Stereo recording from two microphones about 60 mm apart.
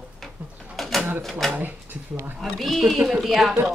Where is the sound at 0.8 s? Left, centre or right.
Centre.